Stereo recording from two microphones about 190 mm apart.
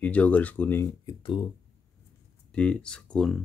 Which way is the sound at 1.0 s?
25° left (ahead or behind).